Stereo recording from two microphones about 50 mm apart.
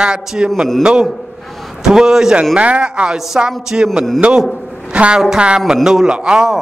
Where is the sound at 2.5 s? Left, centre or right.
Right.